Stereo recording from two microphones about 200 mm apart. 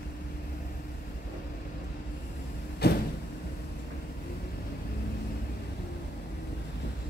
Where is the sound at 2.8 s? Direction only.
50° left (ahead or behind).